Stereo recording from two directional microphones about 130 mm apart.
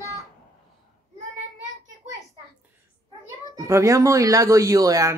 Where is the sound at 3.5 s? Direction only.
25° right (ahead or behind).